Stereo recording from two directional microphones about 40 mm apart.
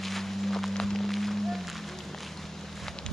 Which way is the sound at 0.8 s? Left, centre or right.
Centre.